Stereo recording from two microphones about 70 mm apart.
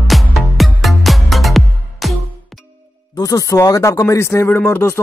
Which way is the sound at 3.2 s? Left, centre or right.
Left.